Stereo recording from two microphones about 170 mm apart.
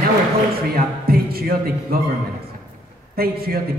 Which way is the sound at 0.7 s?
60° right (ahead or behind).